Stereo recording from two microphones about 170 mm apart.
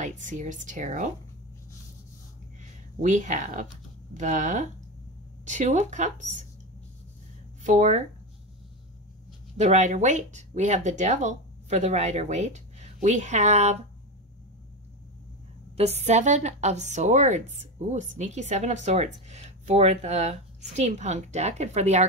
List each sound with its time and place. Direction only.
0.0 s speech: 50° right (ahead or behind)
3.0 s speech: 45° right (ahead or behind)
7.6 s speech: 45° right (ahead or behind)
9.6 s speech: 40° right (ahead or behind)
15.7 s a woman's voice: 40° right (ahead or behind)